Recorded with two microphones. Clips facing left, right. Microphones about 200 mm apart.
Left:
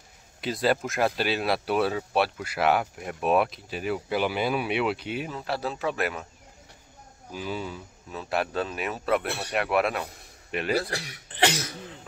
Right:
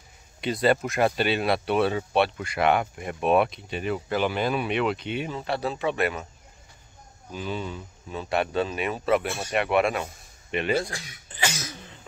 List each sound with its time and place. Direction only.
0.4 s speech: centre (ahead or behind)
7.2 s speech: 5° left (ahead or behind)
10.9 s speech: 70° left (ahead or behind)